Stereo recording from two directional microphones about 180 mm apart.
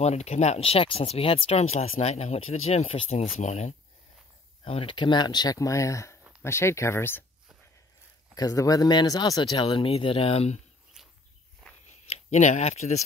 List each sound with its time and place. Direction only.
0.0 s speech: 35° left (ahead or behind); by 7.2 s 15° left (ahead or behind)
8.4 s speech: 20° left (ahead or behind)
11.6 s biting: 5° left (ahead or behind)
12.1 s speech: 40° left (ahead or behind)